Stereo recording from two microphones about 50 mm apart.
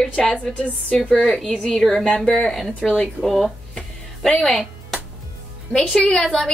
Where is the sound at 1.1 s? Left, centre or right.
Centre.